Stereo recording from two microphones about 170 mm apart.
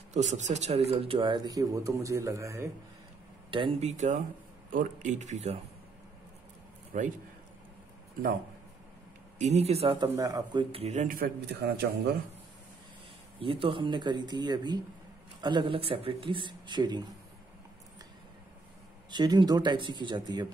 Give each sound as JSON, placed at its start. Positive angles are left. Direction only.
{"t": 0.1, "sound": "speech", "side_deg": -45}
{"t": 3.4, "sound": "speech", "side_deg": -30}
{"t": 3.9, "sound": "speech", "side_deg": -45}
{"t": 6.9, "sound": "speech", "side_deg": -50}
{"t": 9.4, "sound": "a man's voice", "side_deg": -40}
{"t": 10.1, "sound": "a man's voice", "side_deg": -20}
{"t": 13.4, "sound": "speech", "side_deg": -30}
{"t": 19.0, "sound": "speech", "side_deg": -25}